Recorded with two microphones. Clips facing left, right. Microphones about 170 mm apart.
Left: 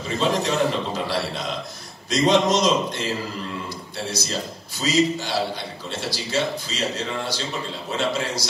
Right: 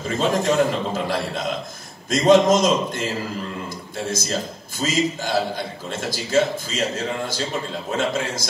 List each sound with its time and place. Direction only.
0.0 s a man's voice: 50° right (ahead or behind)
4.1 s a man's voice: 50° right (ahead or behind)